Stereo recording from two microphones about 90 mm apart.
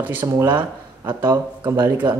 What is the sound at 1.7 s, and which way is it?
Speech, 25° right (ahead or behind).